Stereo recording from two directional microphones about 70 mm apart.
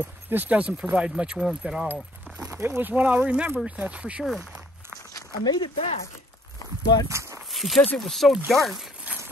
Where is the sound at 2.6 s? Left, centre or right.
Right.